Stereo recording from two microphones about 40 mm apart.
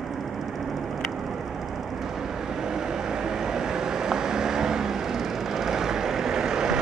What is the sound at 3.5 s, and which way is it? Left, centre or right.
Vehicle, centre.